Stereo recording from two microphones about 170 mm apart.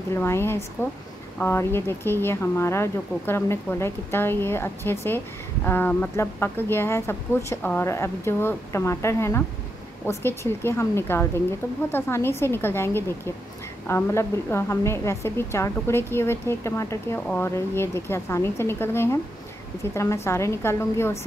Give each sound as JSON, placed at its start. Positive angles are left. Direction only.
{"t": 0.1, "sound": "a woman's voice", "side_deg": 15}